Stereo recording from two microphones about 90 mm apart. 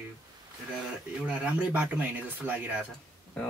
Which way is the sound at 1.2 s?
15° right (ahead or behind).